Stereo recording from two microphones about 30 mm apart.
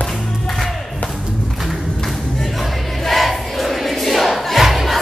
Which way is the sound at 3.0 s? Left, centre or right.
Centre.